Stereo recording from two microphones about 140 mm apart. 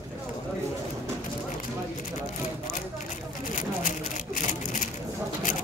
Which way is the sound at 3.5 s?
65° left (ahead or behind).